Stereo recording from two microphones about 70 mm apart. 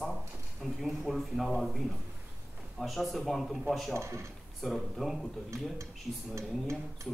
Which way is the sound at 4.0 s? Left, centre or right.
Right.